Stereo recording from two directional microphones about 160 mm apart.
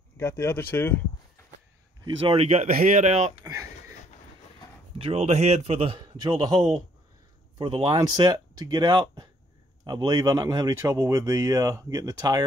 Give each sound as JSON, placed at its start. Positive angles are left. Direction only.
{"t": 0.2, "sound": "speech", "side_deg": 15}
{"t": 2.0, "sound": "a man's voice", "side_deg": -35}
{"t": 4.9, "sound": "a man's voice", "side_deg": -40}
{"t": 7.5, "sound": "speech", "side_deg": -30}